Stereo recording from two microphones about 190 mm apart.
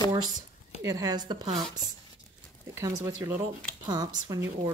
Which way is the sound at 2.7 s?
15° right (ahead or behind).